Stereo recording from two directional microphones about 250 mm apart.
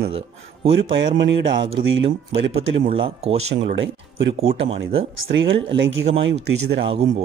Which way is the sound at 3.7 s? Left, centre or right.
Right.